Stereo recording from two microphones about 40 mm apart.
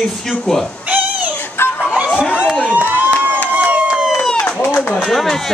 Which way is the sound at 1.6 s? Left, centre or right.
Left.